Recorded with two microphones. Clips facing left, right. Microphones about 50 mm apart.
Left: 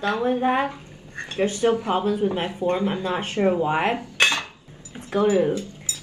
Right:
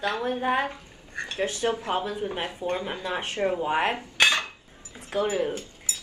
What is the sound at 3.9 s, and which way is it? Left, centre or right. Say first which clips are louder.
Cutlery: left 1 dB; left.